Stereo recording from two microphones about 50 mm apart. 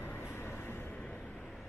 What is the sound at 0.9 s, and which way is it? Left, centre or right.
Vehicle, left.